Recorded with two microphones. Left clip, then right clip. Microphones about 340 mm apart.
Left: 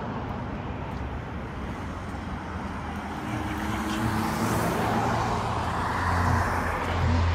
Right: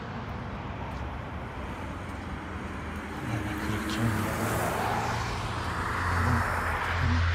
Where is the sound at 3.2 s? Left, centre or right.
Centre.